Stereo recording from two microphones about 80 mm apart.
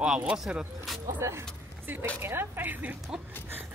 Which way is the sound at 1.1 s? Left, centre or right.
Right.